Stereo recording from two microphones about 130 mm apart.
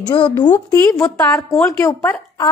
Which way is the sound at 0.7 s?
20° left (ahead or behind).